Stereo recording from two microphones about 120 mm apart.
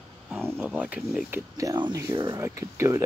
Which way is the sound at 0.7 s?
10° right (ahead or behind).